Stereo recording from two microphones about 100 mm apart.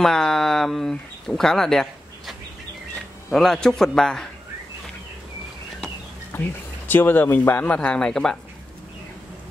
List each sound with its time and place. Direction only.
0.0 s a man's voice: 5° left (ahead or behind)
6.3 s speech: 20° left (ahead or behind)